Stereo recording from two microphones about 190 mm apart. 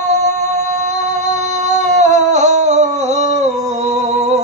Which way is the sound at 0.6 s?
40° right (ahead or behind).